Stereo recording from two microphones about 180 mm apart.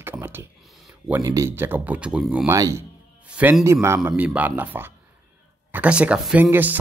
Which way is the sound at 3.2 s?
5° right (ahead or behind).